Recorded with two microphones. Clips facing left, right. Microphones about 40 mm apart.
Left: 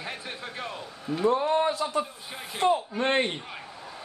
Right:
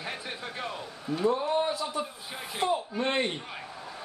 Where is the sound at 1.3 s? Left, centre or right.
Left.